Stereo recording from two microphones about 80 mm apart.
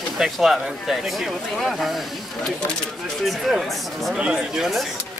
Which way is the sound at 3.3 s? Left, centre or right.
Centre.